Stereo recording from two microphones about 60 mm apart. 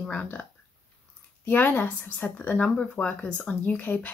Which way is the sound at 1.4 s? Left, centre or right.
Left.